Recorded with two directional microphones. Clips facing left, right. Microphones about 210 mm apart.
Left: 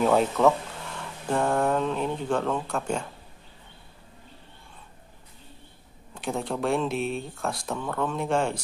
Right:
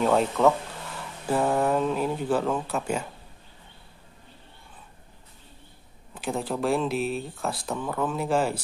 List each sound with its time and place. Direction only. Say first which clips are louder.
0.0 s speech: even; centre (ahead or behind)
6.1 s speech: right 1 dB; centre (ahead or behind)